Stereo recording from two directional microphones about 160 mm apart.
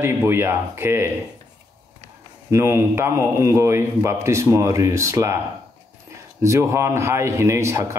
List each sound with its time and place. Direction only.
0.0 s a man's voice: 15° right (ahead or behind)
2.5 s a man's voice: 15° right (ahead or behind)
6.4 s a man's voice: 15° right (ahead or behind)